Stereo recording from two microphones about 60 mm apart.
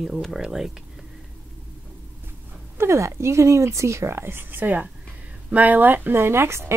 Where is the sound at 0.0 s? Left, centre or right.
Centre.